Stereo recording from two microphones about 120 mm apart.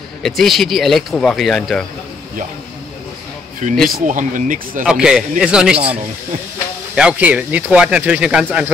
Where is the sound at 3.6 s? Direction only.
90° right.